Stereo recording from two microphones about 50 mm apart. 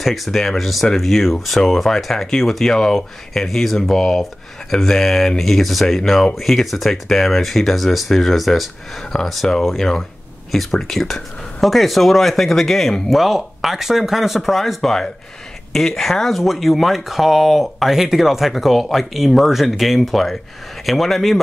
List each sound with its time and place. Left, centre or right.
0.0 s speech: centre